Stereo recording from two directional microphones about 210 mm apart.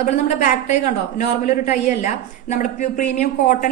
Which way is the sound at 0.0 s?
35° left (ahead or behind).